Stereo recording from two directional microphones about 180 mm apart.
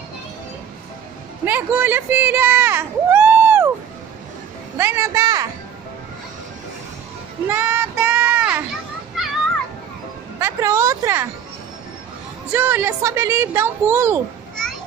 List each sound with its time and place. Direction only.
1.4 s speech: 10° right (ahead or behind)
4.7 s speech: 15° right (ahead or behind)
7.4 s a sound: 10° right (ahead or behind)
9.2 s children playing: centre (ahead or behind)
10.4 s a sound: 15° right (ahead or behind)
12.5 s speech: 10° right (ahead or behind)